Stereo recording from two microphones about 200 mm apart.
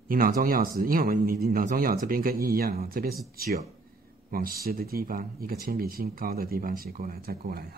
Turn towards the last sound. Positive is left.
turn(degrees=-50)  # may be behind; listen again after turning